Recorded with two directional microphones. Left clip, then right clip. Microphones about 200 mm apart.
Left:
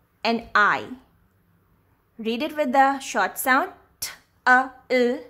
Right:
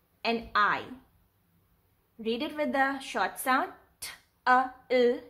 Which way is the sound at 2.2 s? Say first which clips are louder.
Left 6 dB; 25° left (ahead or behind).